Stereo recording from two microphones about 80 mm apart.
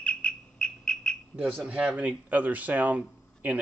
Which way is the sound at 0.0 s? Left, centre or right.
Centre.